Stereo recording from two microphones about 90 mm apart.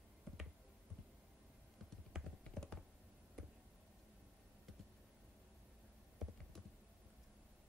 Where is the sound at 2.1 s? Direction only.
5° right (ahead or behind).